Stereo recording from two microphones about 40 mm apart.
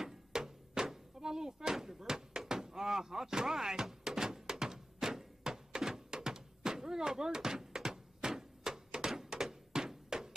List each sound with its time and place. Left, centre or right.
0.0 s music: centre
1.2 s slam: centre